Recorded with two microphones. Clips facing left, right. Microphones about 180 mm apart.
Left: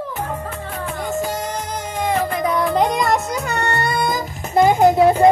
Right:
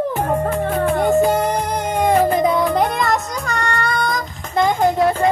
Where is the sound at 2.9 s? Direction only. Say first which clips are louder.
Left 1 dB; centre (ahead or behind).